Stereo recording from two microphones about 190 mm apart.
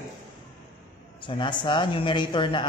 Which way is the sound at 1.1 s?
25° left (ahead or behind).